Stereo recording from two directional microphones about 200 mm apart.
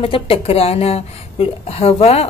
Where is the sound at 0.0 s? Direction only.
30° left (ahead or behind).